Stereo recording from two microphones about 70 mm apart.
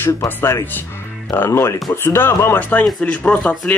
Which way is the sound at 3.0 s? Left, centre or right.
Left.